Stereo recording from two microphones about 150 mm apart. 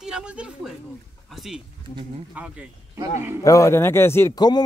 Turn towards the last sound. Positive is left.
turn(degrees=25)  # may be behind; listen again after turning